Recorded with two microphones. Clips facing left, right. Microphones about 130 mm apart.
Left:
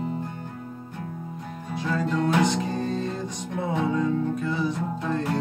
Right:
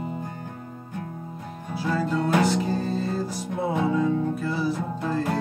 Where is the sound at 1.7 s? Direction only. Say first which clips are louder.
Right 1 dB; 5° right (ahead or behind).